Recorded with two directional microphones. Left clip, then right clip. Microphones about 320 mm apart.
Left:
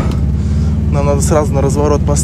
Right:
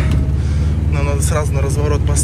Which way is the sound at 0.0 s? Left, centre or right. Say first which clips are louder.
Left 3 dB; centre.